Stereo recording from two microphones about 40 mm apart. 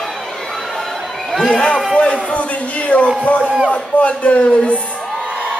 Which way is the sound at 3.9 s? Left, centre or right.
Left.